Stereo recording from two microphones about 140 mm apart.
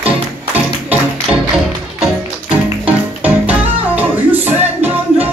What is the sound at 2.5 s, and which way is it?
Music, 10° right (ahead or behind).